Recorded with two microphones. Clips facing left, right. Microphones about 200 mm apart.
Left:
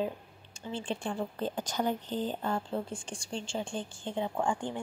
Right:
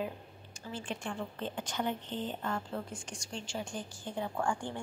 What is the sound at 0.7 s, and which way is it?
Speech, 30° left (ahead or behind).